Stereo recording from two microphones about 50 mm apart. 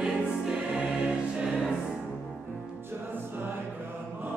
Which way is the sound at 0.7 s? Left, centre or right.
Right.